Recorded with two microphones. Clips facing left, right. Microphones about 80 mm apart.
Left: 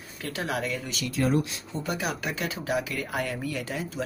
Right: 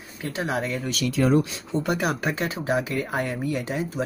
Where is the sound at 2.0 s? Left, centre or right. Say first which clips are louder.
Right 5 dB; right.